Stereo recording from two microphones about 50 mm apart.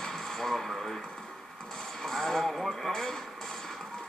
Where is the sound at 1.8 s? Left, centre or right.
Centre.